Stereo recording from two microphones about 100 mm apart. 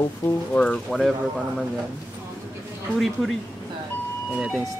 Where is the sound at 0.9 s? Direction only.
Centre (ahead or behind).